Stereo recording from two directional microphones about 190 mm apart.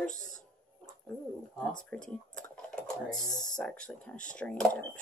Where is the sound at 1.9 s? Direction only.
5° left (ahead or behind).